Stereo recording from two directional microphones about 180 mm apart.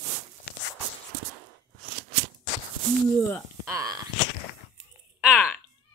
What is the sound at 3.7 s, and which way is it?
Speech, 20° right (ahead or behind).